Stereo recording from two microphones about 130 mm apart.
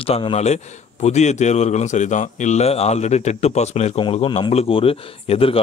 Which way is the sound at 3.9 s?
40° left (ahead or behind).